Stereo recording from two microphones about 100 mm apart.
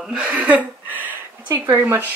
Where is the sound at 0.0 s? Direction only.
10° right (ahead or behind).